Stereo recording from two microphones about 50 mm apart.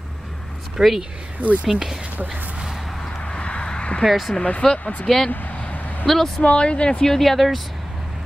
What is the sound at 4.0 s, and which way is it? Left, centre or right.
Speech, centre.